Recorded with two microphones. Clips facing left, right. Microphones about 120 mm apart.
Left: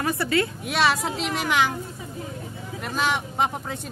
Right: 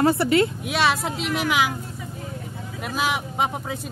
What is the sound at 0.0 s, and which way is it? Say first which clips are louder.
Speech: right 5 dB; 25° right (ahead or behind).